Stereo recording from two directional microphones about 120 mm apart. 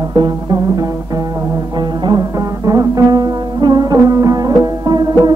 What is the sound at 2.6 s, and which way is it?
Music, 30° right (ahead or behind).